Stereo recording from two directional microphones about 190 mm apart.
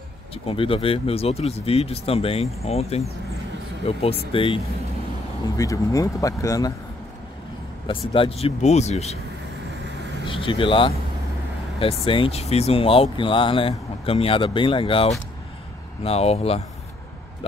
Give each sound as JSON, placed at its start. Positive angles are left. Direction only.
{"t": 0.3, "sound": "speech", "side_deg": 30}
{"t": 5.6, "sound": "speech", "side_deg": 15}
{"t": 8.1, "sound": "speech", "side_deg": 30}
{"t": 10.2, "sound": "speech", "side_deg": 25}